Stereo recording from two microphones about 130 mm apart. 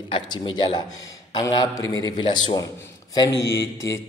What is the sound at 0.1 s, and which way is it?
A man's voice, 35° left (ahead or behind).